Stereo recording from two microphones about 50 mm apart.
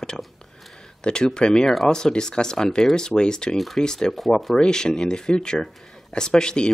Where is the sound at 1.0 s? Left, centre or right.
Centre.